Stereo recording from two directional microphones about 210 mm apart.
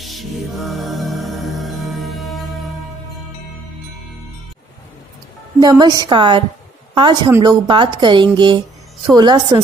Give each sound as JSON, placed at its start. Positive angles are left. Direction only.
{"t": 0.0, "sound": "music", "side_deg": 0}
{"t": 5.6, "sound": "a woman's voice", "side_deg": -20}